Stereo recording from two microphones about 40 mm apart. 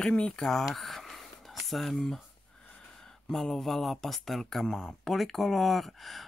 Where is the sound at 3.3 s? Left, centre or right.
Centre.